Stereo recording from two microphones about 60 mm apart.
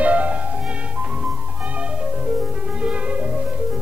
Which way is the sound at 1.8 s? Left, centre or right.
Centre.